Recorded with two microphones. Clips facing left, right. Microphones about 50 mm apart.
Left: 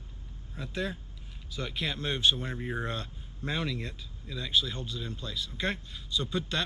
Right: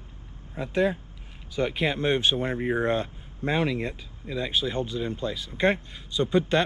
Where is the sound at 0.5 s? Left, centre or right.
Right.